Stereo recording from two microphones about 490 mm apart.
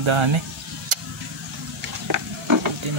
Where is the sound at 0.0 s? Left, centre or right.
Right.